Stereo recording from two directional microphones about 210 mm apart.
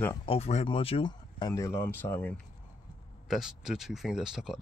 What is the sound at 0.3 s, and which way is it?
Speech, 30° left (ahead or behind).